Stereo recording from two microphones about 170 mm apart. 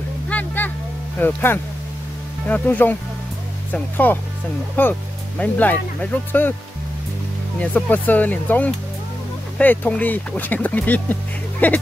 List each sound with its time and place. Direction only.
0.3 s vehicle: 10° left (ahead or behind)
1.2 s speech: 10° left (ahead or behind)
7.6 s speech: 10° left (ahead or behind)